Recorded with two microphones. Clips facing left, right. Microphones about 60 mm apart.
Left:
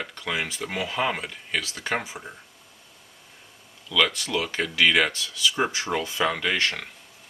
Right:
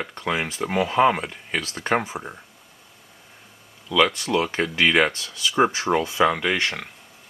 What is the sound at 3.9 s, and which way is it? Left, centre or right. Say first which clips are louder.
Speech: right 4 dB; right.